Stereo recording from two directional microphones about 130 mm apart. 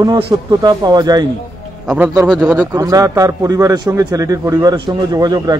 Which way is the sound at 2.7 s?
30° right (ahead or behind).